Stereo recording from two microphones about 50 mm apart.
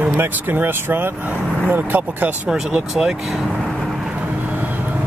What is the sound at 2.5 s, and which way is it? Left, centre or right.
Speech, centre.